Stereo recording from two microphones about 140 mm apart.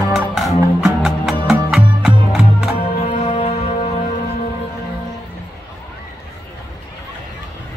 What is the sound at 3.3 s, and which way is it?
Music, 55° left (ahead or behind).